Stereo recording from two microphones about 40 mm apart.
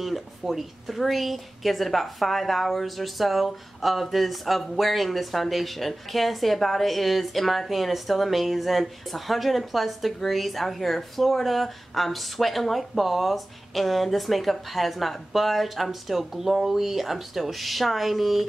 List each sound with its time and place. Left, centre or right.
0.0 s speech: centre